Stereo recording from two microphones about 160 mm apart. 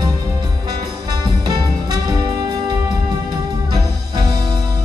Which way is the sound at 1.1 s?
25° right (ahead or behind).